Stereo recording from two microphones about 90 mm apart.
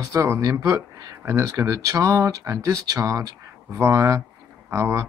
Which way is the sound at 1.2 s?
30° right (ahead or behind).